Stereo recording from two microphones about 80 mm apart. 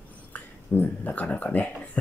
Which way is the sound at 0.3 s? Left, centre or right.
Left.